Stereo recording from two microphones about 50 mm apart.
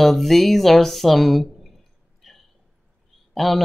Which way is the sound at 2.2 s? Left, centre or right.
Centre.